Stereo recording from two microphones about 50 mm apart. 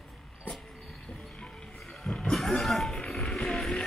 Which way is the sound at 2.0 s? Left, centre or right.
Centre.